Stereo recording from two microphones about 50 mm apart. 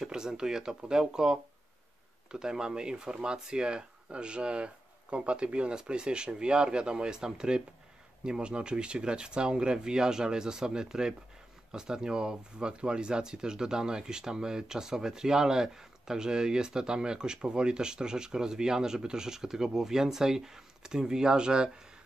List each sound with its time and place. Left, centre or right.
0.0 s speech: centre